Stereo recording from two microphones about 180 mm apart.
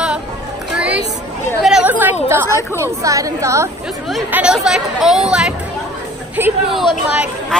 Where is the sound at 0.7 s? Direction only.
5° right (ahead or behind).